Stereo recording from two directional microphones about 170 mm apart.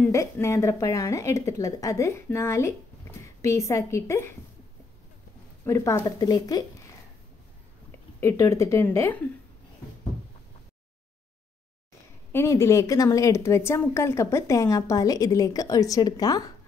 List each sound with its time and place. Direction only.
0.1 s a woman's voice: 15° left (ahead or behind)
5.7 s a woman's voice: 15° left (ahead or behind)
8.2 s a woman's voice: 15° left (ahead or behind)
12.3 s a woman's voice: 15° left (ahead or behind)